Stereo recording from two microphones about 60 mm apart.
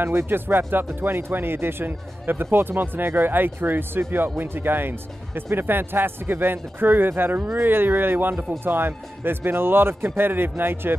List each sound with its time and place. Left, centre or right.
0.0 s speech: right